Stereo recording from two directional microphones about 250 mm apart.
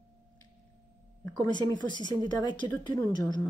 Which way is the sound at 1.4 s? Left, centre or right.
Centre.